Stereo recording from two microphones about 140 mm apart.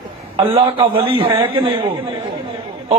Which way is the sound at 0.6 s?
40° right (ahead or behind).